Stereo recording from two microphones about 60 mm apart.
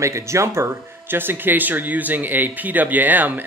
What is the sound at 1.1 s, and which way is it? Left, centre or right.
Speech, right.